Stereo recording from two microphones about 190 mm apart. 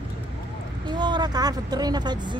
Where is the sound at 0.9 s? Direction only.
25° right (ahead or behind).